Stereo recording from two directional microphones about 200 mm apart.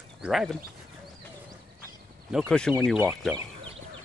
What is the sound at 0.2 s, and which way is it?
Speech, centre (ahead or behind).